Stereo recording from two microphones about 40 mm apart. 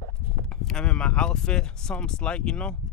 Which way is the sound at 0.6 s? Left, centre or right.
Centre.